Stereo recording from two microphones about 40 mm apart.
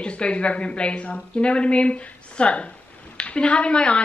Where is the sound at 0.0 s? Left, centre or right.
Left.